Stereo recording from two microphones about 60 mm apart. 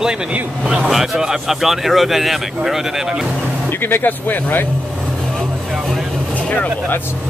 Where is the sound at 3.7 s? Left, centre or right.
Left.